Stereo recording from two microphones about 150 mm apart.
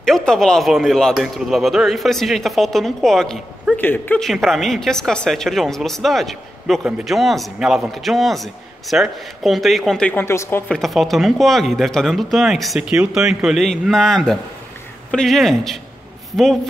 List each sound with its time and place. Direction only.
0.0 s a woman's voice: 5° left (ahead or behind)
4.2 s a woman's voice: centre (ahead or behind); by 10.6 s 15° left (ahead or behind)
10.7 s a woman's voice: centre (ahead or behind)